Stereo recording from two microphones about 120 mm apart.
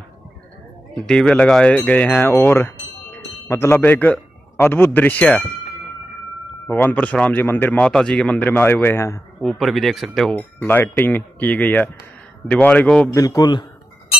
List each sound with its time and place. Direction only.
1.0 s speech: 5° left (ahead or behind)
6.7 s a man's voice: 15° left (ahead or behind)
9.4 s speech: centre (ahead or behind)
10.3 s a man's voice: 15° left (ahead or behind)
13.1 s a man's voice: 30° left (ahead or behind)